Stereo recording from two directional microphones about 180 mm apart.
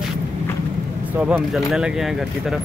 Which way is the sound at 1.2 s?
5° right (ahead or behind).